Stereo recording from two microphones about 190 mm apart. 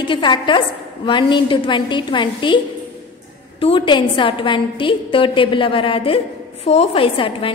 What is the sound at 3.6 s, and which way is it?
A woman's voice, 25° left (ahead or behind).